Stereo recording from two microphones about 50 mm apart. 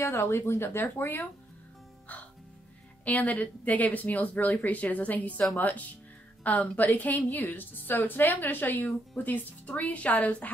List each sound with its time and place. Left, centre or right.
0.0 s speech: left
3.1 s a woman's voice: left